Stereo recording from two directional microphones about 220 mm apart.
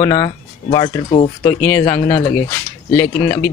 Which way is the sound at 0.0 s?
20° left (ahead or behind).